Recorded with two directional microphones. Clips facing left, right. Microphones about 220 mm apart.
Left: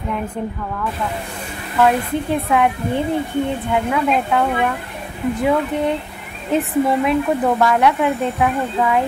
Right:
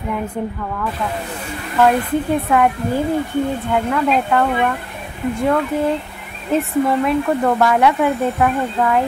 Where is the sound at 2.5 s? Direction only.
Centre (ahead or behind).